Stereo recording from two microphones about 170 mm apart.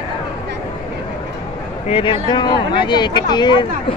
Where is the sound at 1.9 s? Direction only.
30° left (ahead or behind).